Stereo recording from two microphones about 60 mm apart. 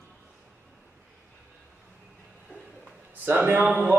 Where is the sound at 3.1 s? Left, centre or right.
Right.